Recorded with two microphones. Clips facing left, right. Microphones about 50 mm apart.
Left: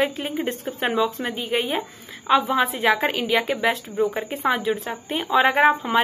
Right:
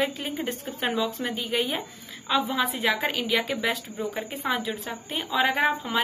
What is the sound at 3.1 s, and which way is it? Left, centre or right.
Speech, centre.